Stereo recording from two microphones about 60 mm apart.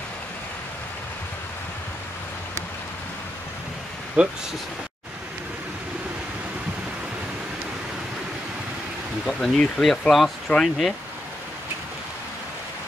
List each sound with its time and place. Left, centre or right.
4.2 s speech: right
9.4 s speech: centre